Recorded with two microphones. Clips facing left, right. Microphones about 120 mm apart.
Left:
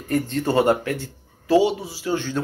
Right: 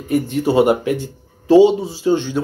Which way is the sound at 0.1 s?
10° right (ahead or behind).